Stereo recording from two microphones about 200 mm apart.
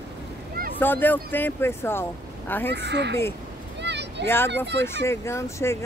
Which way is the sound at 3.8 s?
60° right (ahead or behind).